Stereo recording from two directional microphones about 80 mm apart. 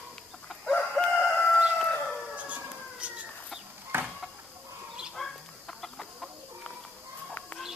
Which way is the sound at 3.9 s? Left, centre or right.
Right.